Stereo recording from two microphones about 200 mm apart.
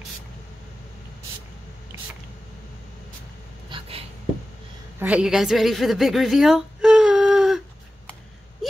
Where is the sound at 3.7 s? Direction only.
25° right (ahead or behind).